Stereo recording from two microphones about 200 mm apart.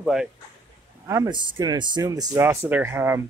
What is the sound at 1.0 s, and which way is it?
Speech, 15° right (ahead or behind).